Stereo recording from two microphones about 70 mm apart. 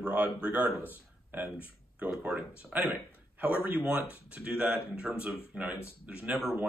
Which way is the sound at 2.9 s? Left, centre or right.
Centre.